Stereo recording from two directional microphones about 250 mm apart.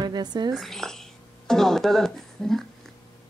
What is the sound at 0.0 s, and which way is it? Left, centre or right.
Speech, centre.